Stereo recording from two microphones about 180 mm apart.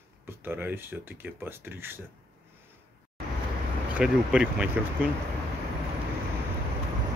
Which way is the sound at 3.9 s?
5° right (ahead or behind).